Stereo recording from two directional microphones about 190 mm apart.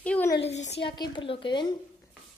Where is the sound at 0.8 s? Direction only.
25° left (ahead or behind).